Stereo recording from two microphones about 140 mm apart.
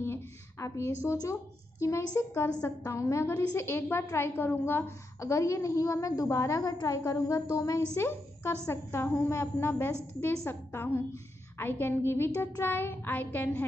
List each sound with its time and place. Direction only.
0.0 s a woman's voice: 20° left (ahead or behind)
11.5 s child singing: 15° left (ahead or behind)